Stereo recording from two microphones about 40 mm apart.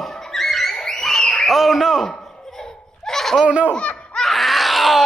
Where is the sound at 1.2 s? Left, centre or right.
Left.